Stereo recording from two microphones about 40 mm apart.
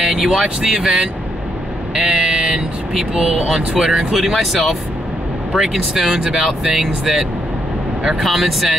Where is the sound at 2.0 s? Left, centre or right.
Centre.